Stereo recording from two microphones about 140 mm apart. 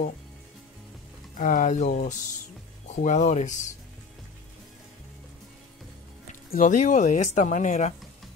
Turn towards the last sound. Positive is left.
turn(degrees=60)  # may be behind; listen again after turning